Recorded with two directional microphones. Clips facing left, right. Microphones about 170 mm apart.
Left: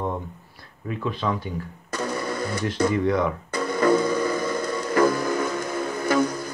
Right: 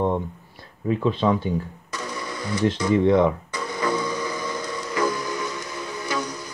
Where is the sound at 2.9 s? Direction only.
25° right (ahead or behind).